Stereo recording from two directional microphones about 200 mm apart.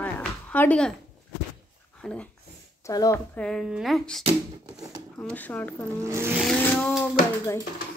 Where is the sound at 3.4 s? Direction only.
5° left (ahead or behind).